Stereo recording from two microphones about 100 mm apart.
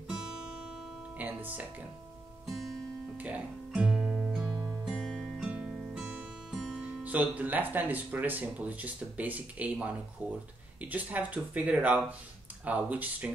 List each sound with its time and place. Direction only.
0.1 s guitar: 5° right (ahead or behind)
1.1 s music: 15° right (ahead or behind)
3.2 s music: 15° right (ahead or behind)
4.9 s music: 5° left (ahead or behind)
5.4 s music: 10° right (ahead or behind)
6.8 s speech: 15° right (ahead or behind)